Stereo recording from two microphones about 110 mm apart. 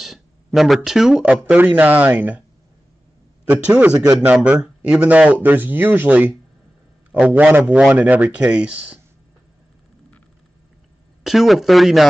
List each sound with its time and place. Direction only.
0.0 s speech: centre (ahead or behind)
3.4 s speech: 10° right (ahead or behind)
11.2 s speech: centre (ahead or behind)